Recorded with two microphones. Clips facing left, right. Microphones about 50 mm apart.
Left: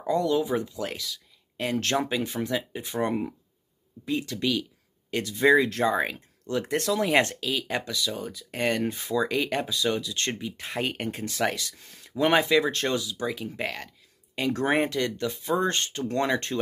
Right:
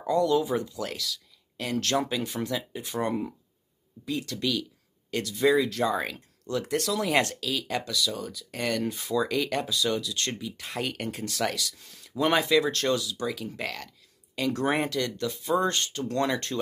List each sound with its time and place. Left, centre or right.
0.0 s speech: left
5.9 s speech: centre